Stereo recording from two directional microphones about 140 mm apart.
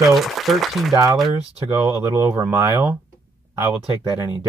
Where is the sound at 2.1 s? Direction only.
20° right (ahead or behind).